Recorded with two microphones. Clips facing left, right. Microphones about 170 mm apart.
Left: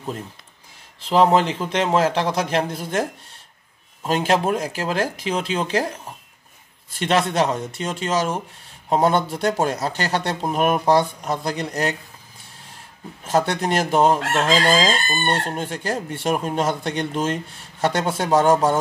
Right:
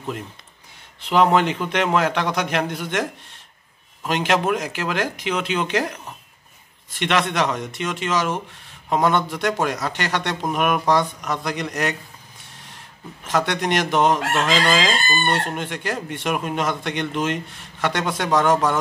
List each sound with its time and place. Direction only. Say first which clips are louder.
1.0 s chicken: left 1 dB; 30° left (ahead or behind)
13.2 s chicken: left 2 dB; 35° left (ahead or behind)